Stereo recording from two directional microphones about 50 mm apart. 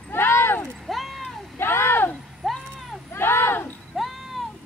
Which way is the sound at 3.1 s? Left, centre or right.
Left.